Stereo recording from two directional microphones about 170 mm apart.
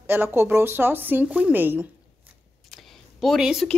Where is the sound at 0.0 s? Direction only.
10° right (ahead or behind).